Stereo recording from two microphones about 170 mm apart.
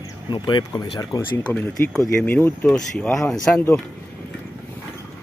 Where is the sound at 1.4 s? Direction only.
5° left (ahead or behind).